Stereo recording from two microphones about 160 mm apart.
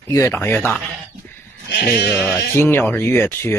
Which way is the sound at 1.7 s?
90° left.